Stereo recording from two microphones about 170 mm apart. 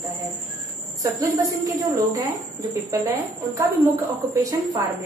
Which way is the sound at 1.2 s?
20° right (ahead or behind).